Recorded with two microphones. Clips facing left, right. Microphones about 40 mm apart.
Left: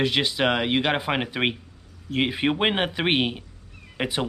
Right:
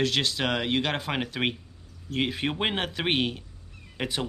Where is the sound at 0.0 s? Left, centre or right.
Centre.